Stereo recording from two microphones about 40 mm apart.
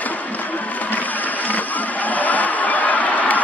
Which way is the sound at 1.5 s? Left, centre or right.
Left.